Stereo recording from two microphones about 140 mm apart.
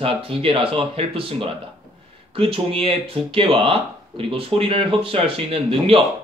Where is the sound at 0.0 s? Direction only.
40° right (ahead or behind).